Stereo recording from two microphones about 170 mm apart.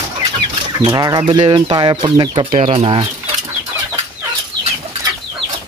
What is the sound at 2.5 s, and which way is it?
Speech, 35° right (ahead or behind).